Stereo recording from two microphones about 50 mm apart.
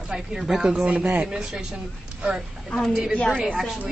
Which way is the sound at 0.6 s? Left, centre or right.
Right.